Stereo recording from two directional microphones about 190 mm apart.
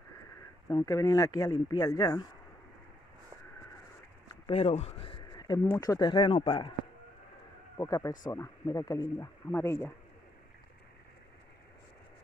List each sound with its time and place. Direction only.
0.7 s speech: 15° left (ahead or behind)
4.5 s a sound: 30° left (ahead or behind)
5.8 s speech: 20° left (ahead or behind)
7.7 s speech: 15° left (ahead or behind)